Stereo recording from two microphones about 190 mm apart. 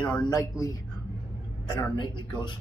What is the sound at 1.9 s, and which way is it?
Speech, 25° left (ahead or behind).